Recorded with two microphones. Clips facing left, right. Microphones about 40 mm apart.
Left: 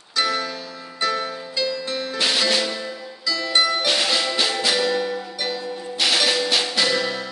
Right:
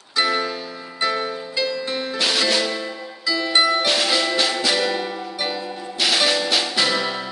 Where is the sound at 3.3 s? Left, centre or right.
Centre.